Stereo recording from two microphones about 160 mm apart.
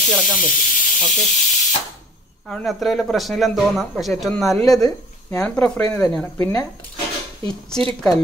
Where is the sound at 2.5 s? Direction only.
5° left (ahead or behind).